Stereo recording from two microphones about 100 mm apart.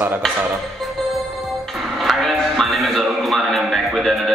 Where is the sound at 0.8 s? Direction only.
Centre (ahead or behind).